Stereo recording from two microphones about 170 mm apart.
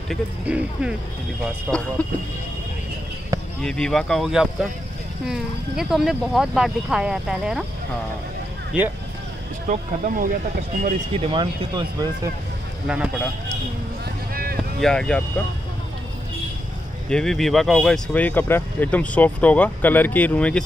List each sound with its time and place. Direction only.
0.1 s speech: 5° right (ahead or behind)
1.7 s speech: 5° left (ahead or behind)
3.6 s speech: 5° left (ahead or behind)
9.7 s speech: 55° right (ahead or behind)
11.2 s speech: 30° right (ahead or behind)
12.8 s speech: 5° right (ahead or behind)
14.3 s boat: 60° right (ahead or behind)
14.8 s speech: 5° left (ahead or behind)
17.1 s speech: 5° left (ahead or behind)